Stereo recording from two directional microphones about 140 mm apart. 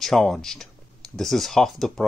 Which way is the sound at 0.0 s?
Centre (ahead or behind).